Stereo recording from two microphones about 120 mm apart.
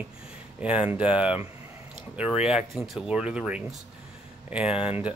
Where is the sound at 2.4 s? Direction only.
5° right (ahead or behind).